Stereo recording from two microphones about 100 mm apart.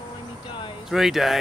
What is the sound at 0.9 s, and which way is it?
Speech, 5° right (ahead or behind).